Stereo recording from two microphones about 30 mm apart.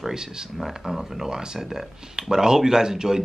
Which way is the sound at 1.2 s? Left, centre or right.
Right.